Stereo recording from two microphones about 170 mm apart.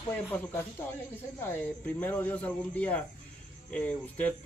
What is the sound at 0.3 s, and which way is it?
Speech, 15° left (ahead or behind).